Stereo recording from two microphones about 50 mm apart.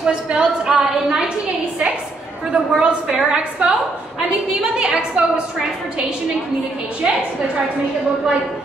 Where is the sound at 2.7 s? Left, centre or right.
Centre.